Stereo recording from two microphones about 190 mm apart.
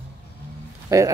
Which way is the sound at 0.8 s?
15° right (ahead or behind).